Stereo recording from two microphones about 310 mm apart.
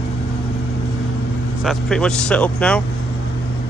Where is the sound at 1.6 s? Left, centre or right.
Centre.